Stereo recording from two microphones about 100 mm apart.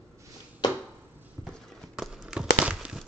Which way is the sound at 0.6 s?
45° left (ahead or behind).